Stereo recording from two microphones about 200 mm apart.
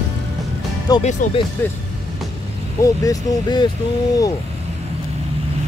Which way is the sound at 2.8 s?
20° left (ahead or behind).